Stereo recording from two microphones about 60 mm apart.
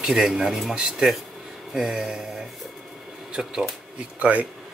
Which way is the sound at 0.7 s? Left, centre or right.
Centre.